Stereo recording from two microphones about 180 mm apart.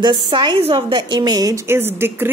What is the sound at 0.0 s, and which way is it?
A woman's voice, 25° right (ahead or behind).